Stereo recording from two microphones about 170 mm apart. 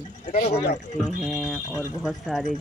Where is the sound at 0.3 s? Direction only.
40° left (ahead or behind).